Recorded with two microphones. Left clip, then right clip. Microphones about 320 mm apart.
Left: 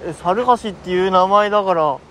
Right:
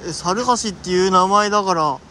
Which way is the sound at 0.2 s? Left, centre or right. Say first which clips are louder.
Left 3 dB; centre.